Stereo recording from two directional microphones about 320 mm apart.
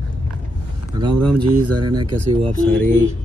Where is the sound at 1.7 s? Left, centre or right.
Right.